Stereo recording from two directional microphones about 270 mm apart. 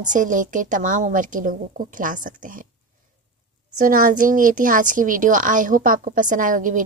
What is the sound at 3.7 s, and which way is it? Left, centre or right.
A woman's voice, right.